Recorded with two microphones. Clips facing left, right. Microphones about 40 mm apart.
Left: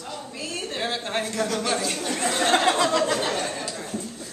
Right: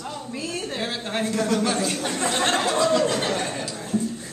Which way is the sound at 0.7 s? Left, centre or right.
Centre.